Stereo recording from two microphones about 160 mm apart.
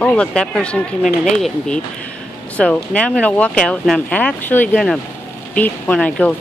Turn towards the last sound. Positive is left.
turn(degrees=10)  # may be behind; listen again after turning